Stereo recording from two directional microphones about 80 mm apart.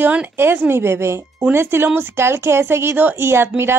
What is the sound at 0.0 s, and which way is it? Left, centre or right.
A woman's voice, right.